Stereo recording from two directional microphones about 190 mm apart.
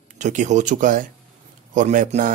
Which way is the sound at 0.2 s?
40° right (ahead or behind).